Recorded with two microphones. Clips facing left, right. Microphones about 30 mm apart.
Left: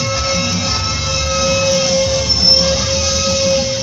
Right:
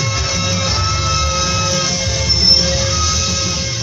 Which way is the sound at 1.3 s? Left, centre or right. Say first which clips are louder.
Left 3 dB; left.